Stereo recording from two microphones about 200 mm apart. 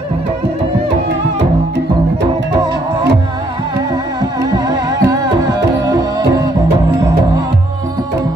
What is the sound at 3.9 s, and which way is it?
Music, 20° right (ahead or behind).